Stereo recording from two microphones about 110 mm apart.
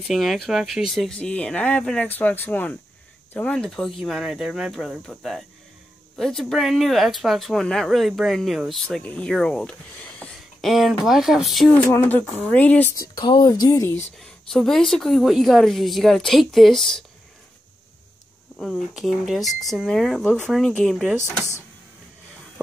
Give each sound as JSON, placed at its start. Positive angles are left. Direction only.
{"t": 0.0, "sound": "a woman's voice", "side_deg": 0}
{"t": 8.8, "sound": "a woman's voice", "side_deg": 10}
{"t": 11.7, "sound": "speech", "side_deg": 20}
{"t": 12.9, "sound": "speech", "side_deg": 40}
{"t": 13.7, "sound": "speech", "side_deg": 25}
{"t": 14.1, "sound": "a woman's voice", "side_deg": 5}
{"t": 18.6, "sound": "a woman's voice", "side_deg": 0}